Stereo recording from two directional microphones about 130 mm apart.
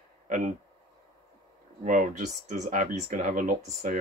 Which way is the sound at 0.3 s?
70° right (ahead or behind).